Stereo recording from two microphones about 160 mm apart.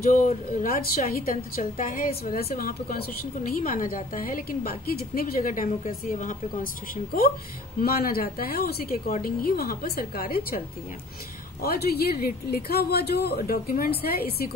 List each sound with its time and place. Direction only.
0.1 s a woman's voice: 50° left (ahead or behind)
7.8 s speech: 70° left (ahead or behind)
11.6 s speech: 75° left (ahead or behind)